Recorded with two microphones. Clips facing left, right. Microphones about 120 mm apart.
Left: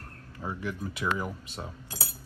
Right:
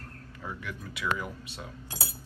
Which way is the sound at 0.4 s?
30° left (ahead or behind).